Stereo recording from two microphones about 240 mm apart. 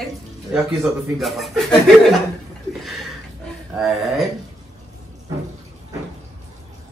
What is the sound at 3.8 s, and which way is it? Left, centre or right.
Speech, centre.